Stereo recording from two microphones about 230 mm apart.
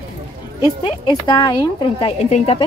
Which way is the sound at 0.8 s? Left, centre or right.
Left.